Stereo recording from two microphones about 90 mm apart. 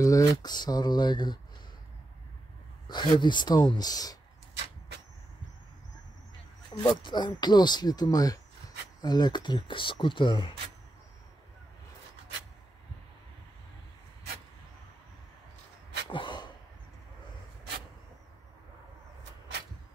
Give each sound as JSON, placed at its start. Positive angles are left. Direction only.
{"t": 0.0, "sound": "speech", "side_deg": 40}
{"t": 2.9, "sound": "speech", "side_deg": 60}
{"t": 6.9, "sound": "speech", "side_deg": 60}
{"t": 16.1, "sound": "a sound", "side_deg": 65}